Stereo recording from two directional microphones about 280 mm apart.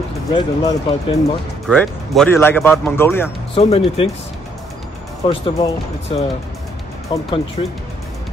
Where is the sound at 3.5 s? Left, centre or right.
Left.